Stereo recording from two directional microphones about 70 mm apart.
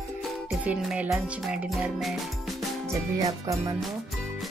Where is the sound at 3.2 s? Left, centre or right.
Right.